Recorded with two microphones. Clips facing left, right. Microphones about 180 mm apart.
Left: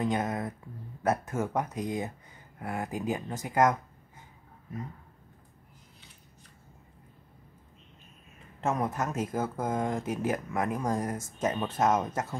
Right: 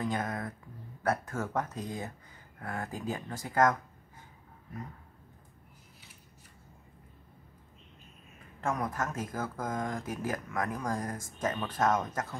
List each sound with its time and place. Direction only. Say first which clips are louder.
0.0 s a sound: left 4 dB; 20° left (ahead or behind)
1.0 s speech: left 3 dB; 20° left (ahead or behind)
8.5 s speech: left 3 dB; 25° left (ahead or behind)